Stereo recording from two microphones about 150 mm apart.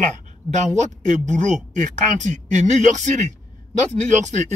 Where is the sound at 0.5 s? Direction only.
50° right (ahead or behind).